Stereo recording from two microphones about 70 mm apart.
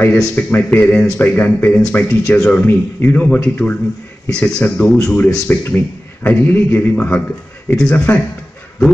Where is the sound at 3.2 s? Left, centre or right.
Centre.